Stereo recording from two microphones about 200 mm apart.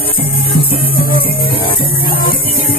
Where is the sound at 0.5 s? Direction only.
50° left (ahead or behind).